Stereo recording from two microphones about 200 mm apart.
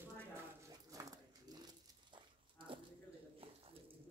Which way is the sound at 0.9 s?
15° right (ahead or behind).